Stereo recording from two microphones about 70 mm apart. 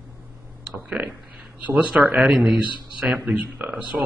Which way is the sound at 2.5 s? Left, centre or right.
Right.